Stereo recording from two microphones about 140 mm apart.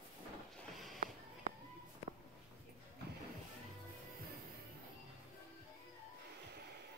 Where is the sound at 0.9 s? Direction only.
70° right (ahead or behind).